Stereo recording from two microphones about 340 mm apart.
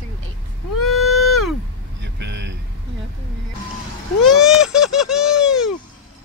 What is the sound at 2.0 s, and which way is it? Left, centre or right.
Vehicle, right.